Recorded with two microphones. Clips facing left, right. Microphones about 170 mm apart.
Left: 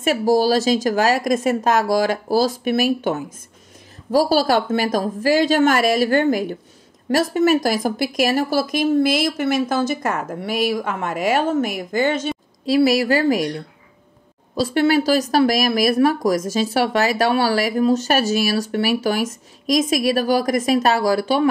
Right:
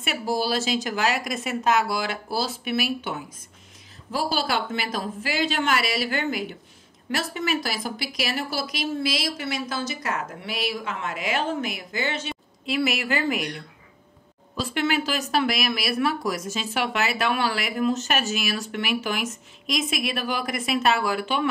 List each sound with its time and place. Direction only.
0.0 s speech: 40° left (ahead or behind)